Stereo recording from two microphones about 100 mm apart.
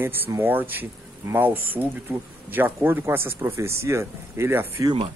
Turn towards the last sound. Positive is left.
turn(degrees=-25)  # may be behind; listen again after turning